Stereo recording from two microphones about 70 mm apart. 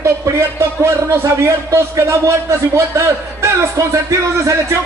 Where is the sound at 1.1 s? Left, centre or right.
Right.